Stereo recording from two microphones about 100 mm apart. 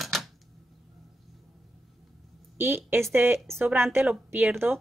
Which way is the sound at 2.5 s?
20° right (ahead or behind).